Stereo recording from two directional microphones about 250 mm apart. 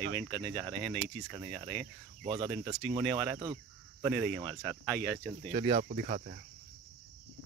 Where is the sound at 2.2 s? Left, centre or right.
Centre.